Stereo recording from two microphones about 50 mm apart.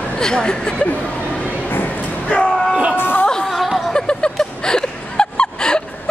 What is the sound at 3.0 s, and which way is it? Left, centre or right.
Music, left.